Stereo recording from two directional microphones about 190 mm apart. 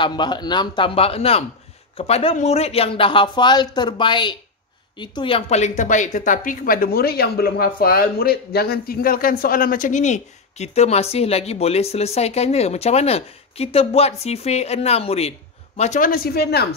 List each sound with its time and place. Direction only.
0.0 s speech: 25° left (ahead or behind); by 16.6 s 55° left (ahead or behind)